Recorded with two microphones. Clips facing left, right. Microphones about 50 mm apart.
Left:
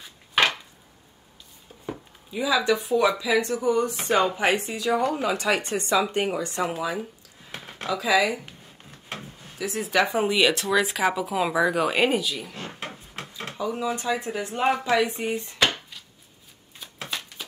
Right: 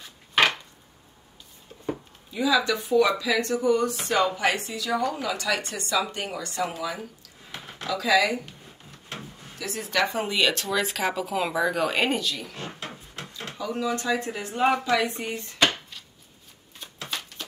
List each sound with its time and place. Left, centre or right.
0.0 s chopping: centre
2.3 s speech: centre
3.2 s speech: centre
9.1 s drawer open or close: centre
10.3 s speech: centre
13.5 s speech: centre
14.5 s speech: centre
14.9 s speech: left